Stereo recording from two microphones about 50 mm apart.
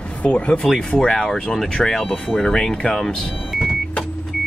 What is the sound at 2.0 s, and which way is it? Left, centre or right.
Speech, left.